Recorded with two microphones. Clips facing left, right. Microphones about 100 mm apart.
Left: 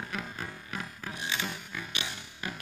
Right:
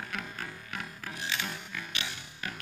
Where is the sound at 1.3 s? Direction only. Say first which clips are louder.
Left 1 dB; 20° left (ahead or behind).